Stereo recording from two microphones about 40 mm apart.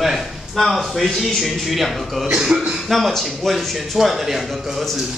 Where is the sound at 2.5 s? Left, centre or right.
Right.